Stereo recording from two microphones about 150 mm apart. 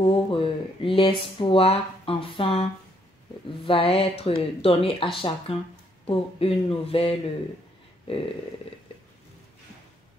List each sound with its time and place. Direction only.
0.0 s speech: 35° left (ahead or behind)